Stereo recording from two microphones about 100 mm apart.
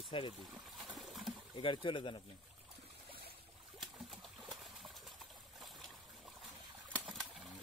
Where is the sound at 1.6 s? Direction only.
55° left (ahead or behind).